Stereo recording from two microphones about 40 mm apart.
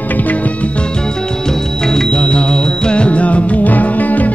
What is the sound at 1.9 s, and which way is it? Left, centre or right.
Music, centre.